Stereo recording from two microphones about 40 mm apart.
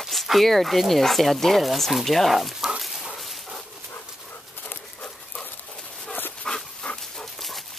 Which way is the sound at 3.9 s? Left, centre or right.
Left.